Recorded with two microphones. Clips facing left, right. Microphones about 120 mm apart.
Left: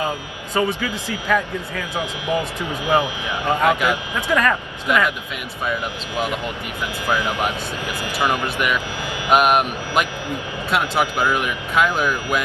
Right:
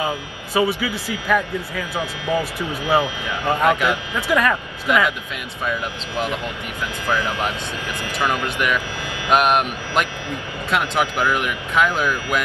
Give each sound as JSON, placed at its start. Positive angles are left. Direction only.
{"t": 0.6, "sound": "speech", "side_deg": -10}
{"t": 2.8, "sound": "speech", "side_deg": 15}
{"t": 3.6, "sound": "speech", "side_deg": 5}
{"t": 4.3, "sound": "speech", "side_deg": -5}
{"t": 7.1, "sound": "speech", "side_deg": 15}